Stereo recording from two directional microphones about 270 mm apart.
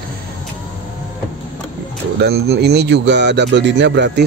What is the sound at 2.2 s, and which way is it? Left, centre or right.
Speech, right.